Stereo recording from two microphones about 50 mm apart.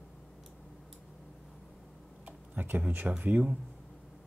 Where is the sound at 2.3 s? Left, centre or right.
Right.